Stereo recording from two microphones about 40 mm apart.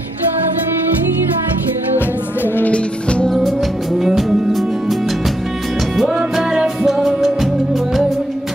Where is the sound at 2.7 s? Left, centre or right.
Left.